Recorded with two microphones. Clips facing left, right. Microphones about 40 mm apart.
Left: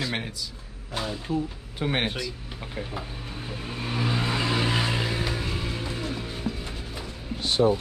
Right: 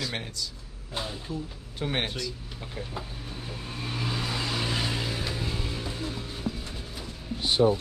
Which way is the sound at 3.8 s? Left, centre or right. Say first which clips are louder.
Left 5 dB; left.